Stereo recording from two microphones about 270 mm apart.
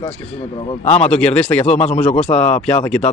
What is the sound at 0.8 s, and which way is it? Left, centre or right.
Speech, left.